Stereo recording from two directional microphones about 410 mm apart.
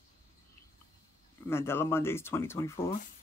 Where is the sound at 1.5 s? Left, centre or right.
Centre.